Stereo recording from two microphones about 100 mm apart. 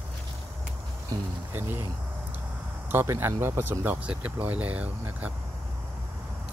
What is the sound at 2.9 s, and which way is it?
Speech, 25° right (ahead or behind).